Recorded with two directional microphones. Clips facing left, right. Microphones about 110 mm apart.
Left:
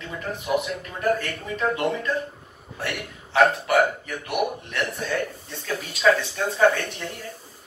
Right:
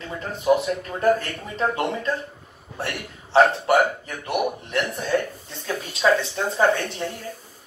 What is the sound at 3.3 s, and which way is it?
Speech, 30° right (ahead or behind).